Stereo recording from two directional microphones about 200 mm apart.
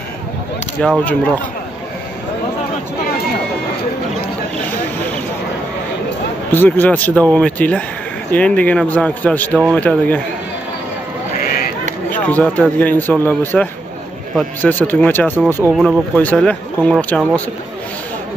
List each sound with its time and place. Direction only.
0.7 s speech: centre (ahead or behind)
6.5 s speech: 10° left (ahead or behind)
11.3 s a sound: 45° left (ahead or behind)
12.3 s speech: 10° left (ahead or behind)
15.7 s speech: centre (ahead or behind)